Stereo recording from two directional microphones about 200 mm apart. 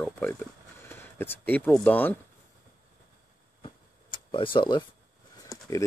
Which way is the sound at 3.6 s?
25° left (ahead or behind).